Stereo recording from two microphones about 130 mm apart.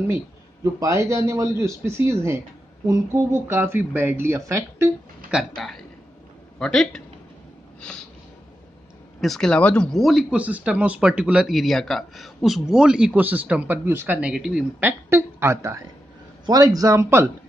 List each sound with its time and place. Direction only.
0.7 s a man's voice: 25° right (ahead or behind)
3.4 s a man's voice: 20° right (ahead or behind)
5.3 s speech: centre (ahead or behind)
9.2 s speech: 5° left (ahead or behind)
14.8 s a man's voice: 20° right (ahead or behind)